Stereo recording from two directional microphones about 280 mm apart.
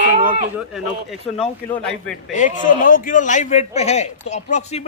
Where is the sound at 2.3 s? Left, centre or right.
Left.